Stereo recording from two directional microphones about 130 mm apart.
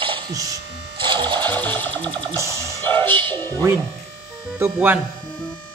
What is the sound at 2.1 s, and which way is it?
Music, 40° right (ahead or behind).